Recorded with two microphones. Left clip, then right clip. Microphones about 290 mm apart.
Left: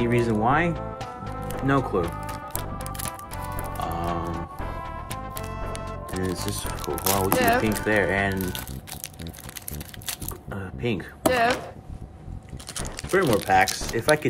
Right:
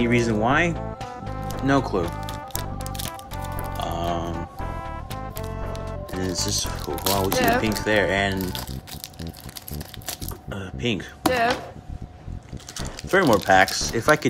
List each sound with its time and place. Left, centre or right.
0.0 s music: centre
10.5 s speech: centre
13.5 s speech: centre